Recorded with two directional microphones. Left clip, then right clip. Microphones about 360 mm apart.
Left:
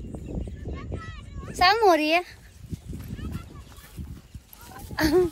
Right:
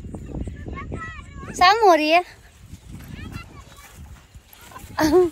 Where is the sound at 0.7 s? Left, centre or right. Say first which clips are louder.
Right 9 dB; centre.